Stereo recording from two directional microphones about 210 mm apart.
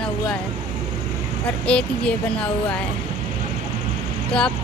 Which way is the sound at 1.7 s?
5° left (ahead or behind).